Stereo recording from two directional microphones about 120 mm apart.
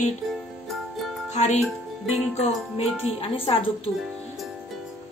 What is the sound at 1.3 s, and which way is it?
Speech, 70° left (ahead or behind).